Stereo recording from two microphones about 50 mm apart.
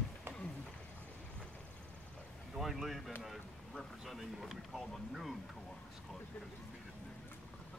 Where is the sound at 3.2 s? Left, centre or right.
Centre.